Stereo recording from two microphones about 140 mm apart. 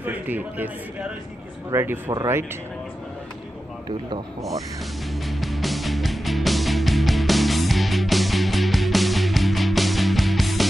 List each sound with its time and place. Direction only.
0.0 s a man's voice: 10° right (ahead or behind)
1.7 s speech: 20° right (ahead or behind)
5.4 s music: centre (ahead or behind)